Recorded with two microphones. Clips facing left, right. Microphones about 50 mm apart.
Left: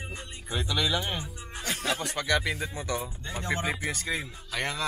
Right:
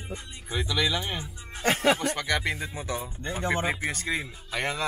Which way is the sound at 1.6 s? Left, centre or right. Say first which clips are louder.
Right 9 dB; right.